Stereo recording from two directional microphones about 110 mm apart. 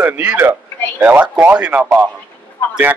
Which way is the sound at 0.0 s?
15° right (ahead or behind).